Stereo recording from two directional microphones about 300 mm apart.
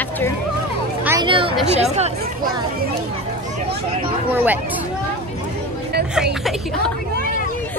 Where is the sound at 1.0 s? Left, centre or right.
Centre.